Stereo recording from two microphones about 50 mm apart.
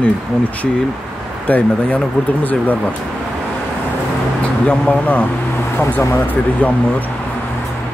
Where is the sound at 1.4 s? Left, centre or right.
Left.